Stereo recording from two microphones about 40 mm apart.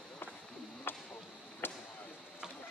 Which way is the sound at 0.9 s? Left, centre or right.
Left.